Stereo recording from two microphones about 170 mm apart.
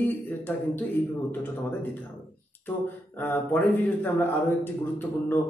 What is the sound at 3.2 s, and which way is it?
Speech, 10° left (ahead or behind).